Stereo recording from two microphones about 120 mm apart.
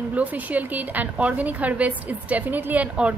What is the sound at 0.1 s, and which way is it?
A woman's voice, 15° right (ahead or behind).